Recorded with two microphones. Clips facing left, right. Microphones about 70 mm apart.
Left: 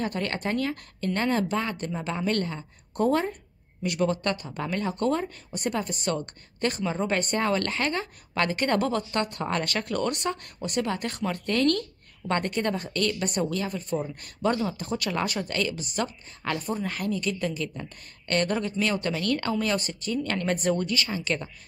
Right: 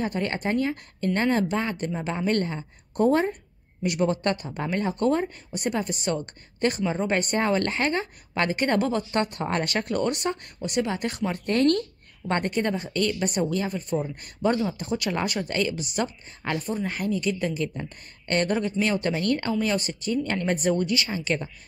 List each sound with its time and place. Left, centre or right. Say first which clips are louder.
0.0 s a woman's voice: right 2 dB; centre
3.8 s a woman's voice: right 2 dB; right
5.6 s a woman's voice: right 2 dB; centre
10.6 s speech: right 2 dB; centre; by 11.8 s right
12.3 s a woman's voice: right 1 dB; centre
19.6 s speech: right 2 dB; centre